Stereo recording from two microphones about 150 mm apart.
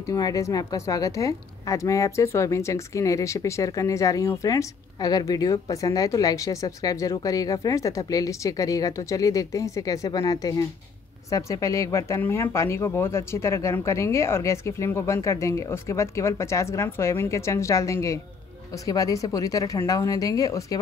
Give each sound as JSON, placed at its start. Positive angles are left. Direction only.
{"t": 0.0, "sound": "a woman's voice", "side_deg": 25}